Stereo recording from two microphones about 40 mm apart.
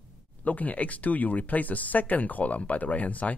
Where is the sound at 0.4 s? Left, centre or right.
Left.